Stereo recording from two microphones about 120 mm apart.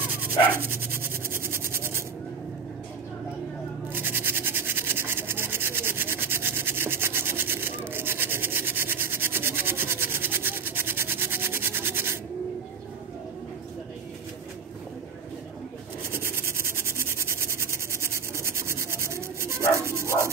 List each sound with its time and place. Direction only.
0.2 s dog: 20° right (ahead or behind)
3.9 s rub: 15° right (ahead or behind)
16.1 s a sound: 20° right (ahead or behind)
19.8 s rub: 25° right (ahead or behind)